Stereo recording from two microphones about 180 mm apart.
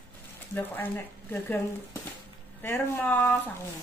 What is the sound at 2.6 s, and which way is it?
Speech, 10° left (ahead or behind).